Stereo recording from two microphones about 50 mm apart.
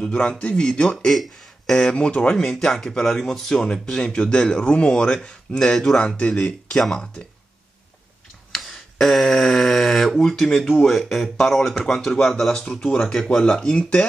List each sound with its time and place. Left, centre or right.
0.0 s speech: left
0.7 s speech: centre
2.3 s speech: centre
5.9 s speech: left
8.5 s tick-tock: centre
9.0 s speech: centre
12.6 s speech: left